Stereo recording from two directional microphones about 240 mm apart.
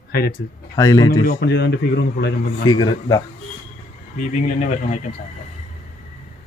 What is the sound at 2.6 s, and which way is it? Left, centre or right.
Speech, centre.